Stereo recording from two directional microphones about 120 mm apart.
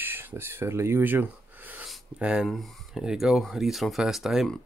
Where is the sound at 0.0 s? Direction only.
15° right (ahead or behind).